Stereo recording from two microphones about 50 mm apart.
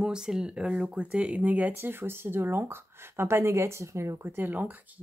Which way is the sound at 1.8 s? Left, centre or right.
Right.